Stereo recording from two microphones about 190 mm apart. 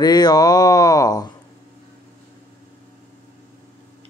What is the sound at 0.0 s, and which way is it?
Speech, 20° left (ahead or behind).